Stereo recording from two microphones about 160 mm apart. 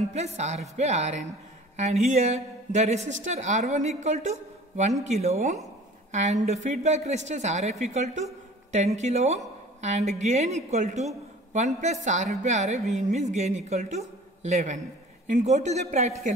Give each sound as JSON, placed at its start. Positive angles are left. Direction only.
{"t": 0.1, "sound": "a woman's voice", "side_deg": -45}